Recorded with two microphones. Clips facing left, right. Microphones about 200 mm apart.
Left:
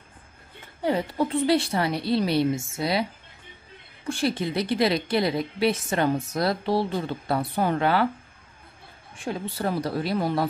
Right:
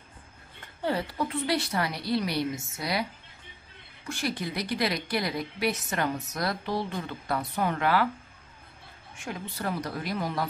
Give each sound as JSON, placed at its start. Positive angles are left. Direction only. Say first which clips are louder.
{"t": 0.8, "sound": "a woman's voice", "louder": "left 5 dB", "side_deg": 20}
{"t": 4.1, "sound": "a woman's voice", "louder": "left 6 dB", "side_deg": 30}
{"t": 9.1, "sound": "speech", "louder": "left 6 dB", "side_deg": 30}